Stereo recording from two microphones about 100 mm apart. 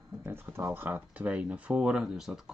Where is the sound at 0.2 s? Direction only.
20° right (ahead or behind).